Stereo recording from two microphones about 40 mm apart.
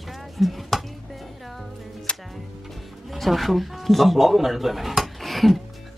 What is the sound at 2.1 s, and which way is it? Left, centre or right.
Music, left.